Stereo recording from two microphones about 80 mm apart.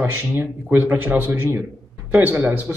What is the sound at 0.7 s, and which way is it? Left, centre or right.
A man's voice, right.